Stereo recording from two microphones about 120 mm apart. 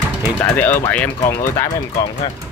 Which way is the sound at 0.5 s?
15° left (ahead or behind).